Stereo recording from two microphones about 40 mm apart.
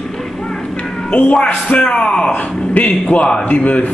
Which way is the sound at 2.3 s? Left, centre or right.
Left.